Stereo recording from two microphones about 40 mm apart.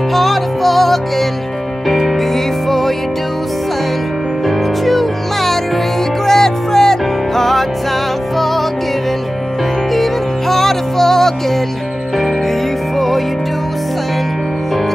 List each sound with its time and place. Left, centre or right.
0.1 s music: centre
4.5 s music: centre
10.5 s music: centre
12.9 s music: centre